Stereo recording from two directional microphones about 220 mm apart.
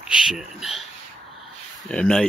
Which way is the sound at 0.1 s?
5° right (ahead or behind).